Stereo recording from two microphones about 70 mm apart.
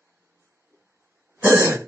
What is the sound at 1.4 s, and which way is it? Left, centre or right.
Throat clearing, right.